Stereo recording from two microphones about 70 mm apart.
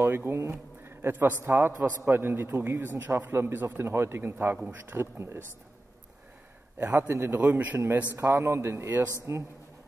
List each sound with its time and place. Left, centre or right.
0.0 s a man's voice: right
6.8 s a man's voice: right
8.2 s a man's voice: right
9.1 s a man's voice: right